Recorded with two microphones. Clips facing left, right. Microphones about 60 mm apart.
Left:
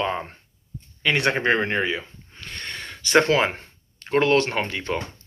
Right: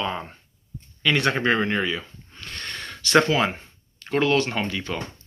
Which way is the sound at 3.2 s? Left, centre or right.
Left.